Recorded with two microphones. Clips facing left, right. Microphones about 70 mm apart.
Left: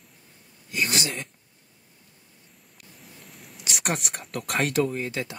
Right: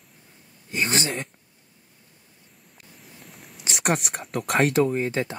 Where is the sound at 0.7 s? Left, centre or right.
Right.